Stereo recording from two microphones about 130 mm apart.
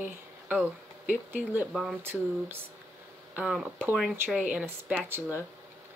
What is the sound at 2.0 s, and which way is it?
Speech, 15° right (ahead or behind).